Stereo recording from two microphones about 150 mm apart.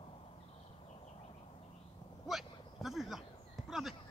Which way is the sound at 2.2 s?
Centre (ahead or behind).